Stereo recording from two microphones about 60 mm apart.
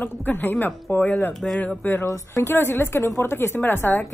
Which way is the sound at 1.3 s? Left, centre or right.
Centre.